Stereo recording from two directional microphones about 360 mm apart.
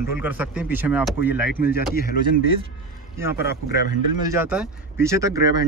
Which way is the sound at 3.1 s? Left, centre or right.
Centre.